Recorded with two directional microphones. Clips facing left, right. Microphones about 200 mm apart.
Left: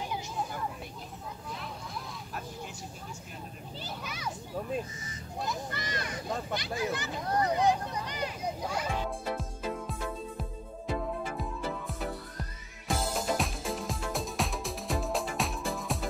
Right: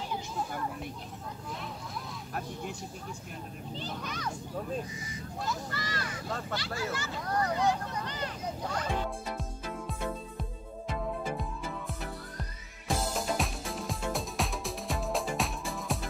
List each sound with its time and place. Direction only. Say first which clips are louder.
3.7 s children playing: right 3 dB; 5° left (ahead or behind)
5.4 s speech: left 1 dB; 20° left (ahead or behind)
10.9 s music: left 1 dB; centre (ahead or behind)
12.8 s music: even; centre (ahead or behind)